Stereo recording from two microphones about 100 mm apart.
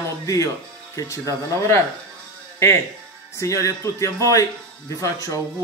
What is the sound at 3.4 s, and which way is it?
Speech, 30° left (ahead or behind).